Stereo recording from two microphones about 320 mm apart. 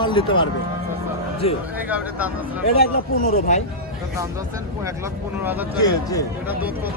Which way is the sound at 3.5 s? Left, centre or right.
Left.